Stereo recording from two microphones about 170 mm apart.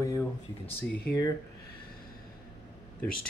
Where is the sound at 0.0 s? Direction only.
20° left (ahead or behind).